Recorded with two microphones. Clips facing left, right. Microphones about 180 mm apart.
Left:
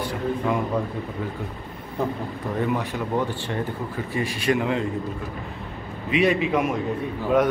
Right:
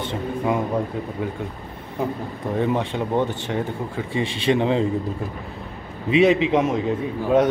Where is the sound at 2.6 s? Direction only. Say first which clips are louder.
Right 3 dB; 25° right (ahead or behind).